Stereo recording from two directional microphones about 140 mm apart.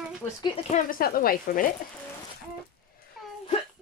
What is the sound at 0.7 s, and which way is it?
Speech, 70° left (ahead or behind).